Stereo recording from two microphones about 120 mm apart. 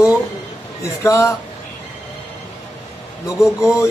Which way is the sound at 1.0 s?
25° left (ahead or behind).